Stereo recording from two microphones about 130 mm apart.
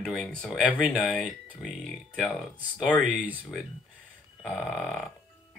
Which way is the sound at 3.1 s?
10° right (ahead or behind).